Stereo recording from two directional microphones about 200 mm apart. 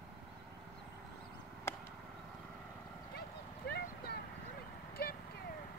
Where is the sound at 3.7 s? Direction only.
50° left (ahead or behind).